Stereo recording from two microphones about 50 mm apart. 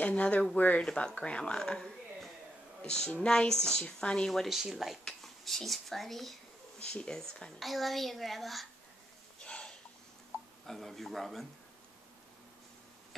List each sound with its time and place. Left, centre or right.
0.0 s speech: left
2.9 s speech: centre
4.3 s a child's voice: centre
6.8 s speech: centre
7.5 s a child's voice: centre
9.4 s a sound: left
10.7 s a child's voice: centre